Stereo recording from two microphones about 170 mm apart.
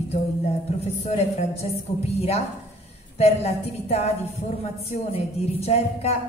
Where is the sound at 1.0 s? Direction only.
40° left (ahead or behind).